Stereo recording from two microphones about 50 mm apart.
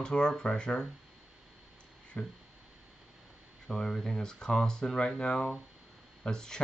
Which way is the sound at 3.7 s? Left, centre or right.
Centre.